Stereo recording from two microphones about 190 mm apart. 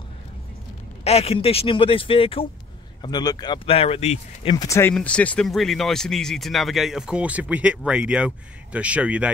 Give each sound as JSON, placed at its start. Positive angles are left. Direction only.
{"t": 1.0, "sound": "speech", "side_deg": 30}
{"t": 4.6, "sound": "speech", "side_deg": 15}